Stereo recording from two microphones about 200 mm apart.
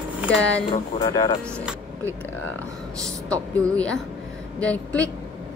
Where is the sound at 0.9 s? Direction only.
20° left (ahead or behind).